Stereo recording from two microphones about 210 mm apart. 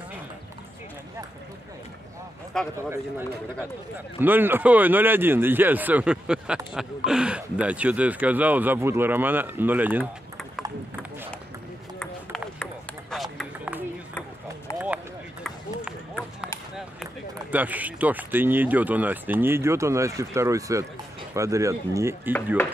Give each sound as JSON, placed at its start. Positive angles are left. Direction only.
{"t": 2.5, "sound": "speech", "side_deg": 5}
{"t": 4.2, "sound": "a man's voice", "side_deg": -10}
{"t": 12.0, "sound": "ping", "side_deg": 5}
{"t": 13.1, "sound": "run", "side_deg": 0}
{"t": 16.7, "sound": "a man's voice", "side_deg": -5}